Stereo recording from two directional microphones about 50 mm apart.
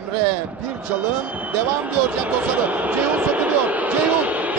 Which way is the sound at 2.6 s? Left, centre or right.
Right.